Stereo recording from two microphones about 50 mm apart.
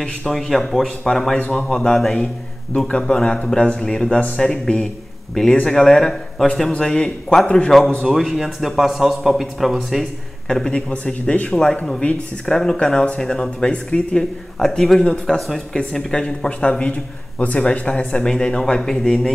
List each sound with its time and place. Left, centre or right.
0.0 s a man's voice: centre
10.5 s speech: centre
14.6 s speech: centre
16.9 s speech: left; by 19.3 s centre